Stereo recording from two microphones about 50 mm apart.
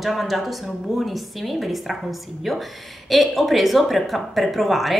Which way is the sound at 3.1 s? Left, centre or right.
Centre.